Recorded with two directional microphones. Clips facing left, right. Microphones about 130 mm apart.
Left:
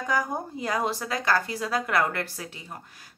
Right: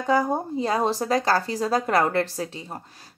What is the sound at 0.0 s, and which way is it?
Speech, 30° right (ahead or behind).